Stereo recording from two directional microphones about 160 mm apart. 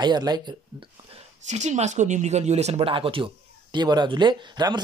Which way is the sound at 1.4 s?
45° right (ahead or behind).